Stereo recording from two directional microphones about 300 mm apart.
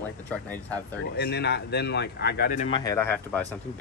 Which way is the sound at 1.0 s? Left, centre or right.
Left.